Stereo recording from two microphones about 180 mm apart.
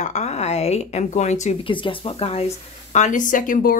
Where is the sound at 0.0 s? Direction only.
40° left (ahead or behind).